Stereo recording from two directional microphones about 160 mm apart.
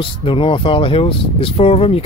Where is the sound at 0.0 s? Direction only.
35° left (ahead or behind).